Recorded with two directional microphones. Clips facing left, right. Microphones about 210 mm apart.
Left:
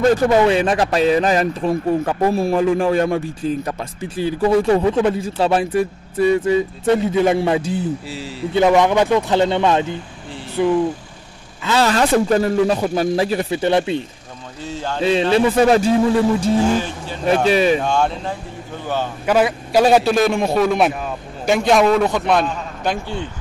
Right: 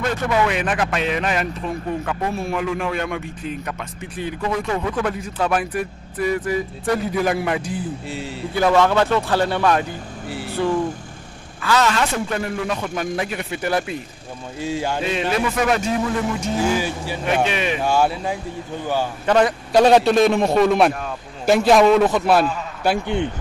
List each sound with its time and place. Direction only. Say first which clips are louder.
0.0 s speech: left 7 dB; 35° left (ahead or behind)
8.1 s a man's voice: left 1 dB; centre (ahead or behind)
8.5 s speech: left 3 dB; 20° left (ahead or behind)
11.8 s speech: left 5 dB; 35° left (ahead or behind)
14.6 s speech: right 3 dB; 10° right (ahead or behind)
15.0 s speech: left 11 dB; 30° left (ahead or behind)
16.6 s speech: left 2 dB; 10° right (ahead or behind)
17.5 s speech: left 8 dB; 35° left (ahead or behind)
17.7 s speech: even; 5° right (ahead or behind)
19.2 s a man's voice: left 1 dB; 5° left (ahead or behind)